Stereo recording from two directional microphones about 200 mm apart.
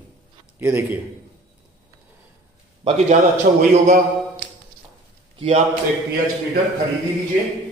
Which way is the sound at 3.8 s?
40° right (ahead or behind).